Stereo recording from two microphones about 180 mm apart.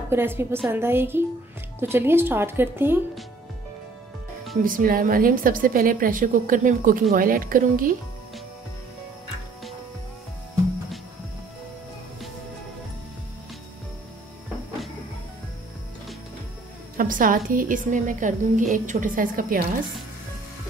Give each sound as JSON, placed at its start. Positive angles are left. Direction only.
{"t": 0.1, "sound": "speech", "side_deg": -15}
{"t": 4.6, "sound": "a woman's voice", "side_deg": -50}
{"t": 16.9, "sound": "a woman's voice", "side_deg": -50}